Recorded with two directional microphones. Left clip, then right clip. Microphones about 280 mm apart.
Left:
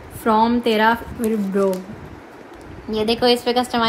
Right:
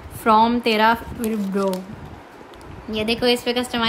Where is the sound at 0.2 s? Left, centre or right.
Centre.